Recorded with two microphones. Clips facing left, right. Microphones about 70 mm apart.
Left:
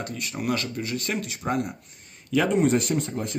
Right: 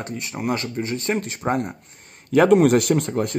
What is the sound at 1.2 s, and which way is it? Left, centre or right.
Speech, right.